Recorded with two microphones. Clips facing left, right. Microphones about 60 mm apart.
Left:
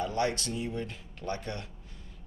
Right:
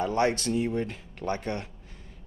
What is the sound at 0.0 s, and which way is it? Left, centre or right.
Speech, right.